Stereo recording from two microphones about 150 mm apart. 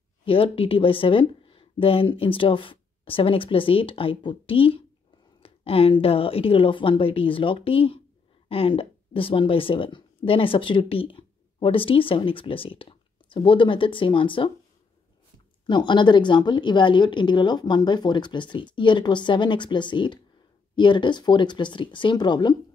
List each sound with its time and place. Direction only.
0.2 s speech: 40° left (ahead or behind)
15.6 s speech: 30° left (ahead or behind)